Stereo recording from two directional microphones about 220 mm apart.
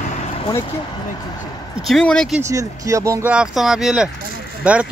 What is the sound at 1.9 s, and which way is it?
Speech, 5° left (ahead or behind).